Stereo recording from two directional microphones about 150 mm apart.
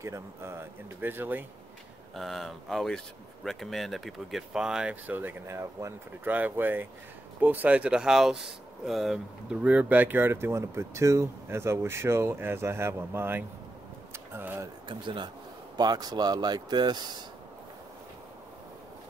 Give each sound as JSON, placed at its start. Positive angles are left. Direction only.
{"t": 0.0, "sound": "speech", "side_deg": -20}
{"t": 2.1, "sound": "speech", "side_deg": 0}
{"t": 14.9, "sound": "speech", "side_deg": -30}